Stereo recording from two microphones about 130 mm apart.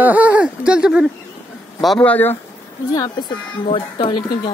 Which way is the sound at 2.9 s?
35° left (ahead or behind).